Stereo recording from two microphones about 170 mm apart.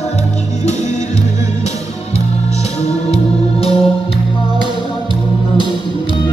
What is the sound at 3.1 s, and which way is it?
Music, 35° left (ahead or behind).